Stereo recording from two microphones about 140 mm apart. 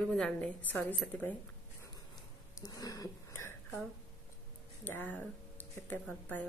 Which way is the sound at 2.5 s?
25° left (ahead or behind).